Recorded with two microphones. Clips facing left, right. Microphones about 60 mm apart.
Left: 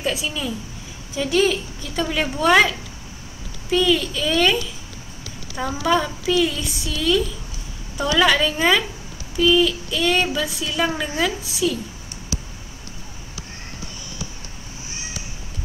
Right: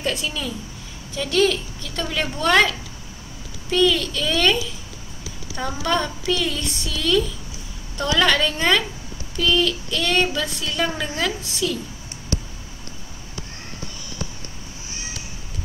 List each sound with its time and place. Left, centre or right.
0.0 s a woman's voice: centre
3.7 s speech: centre
5.6 s speech: centre